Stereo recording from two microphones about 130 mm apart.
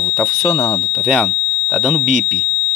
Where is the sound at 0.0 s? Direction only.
5° left (ahead or behind).